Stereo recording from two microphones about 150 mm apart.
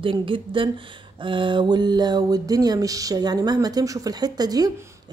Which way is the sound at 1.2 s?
35° right (ahead or behind).